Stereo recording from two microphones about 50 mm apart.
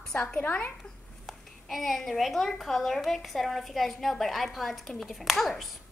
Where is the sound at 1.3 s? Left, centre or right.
Centre.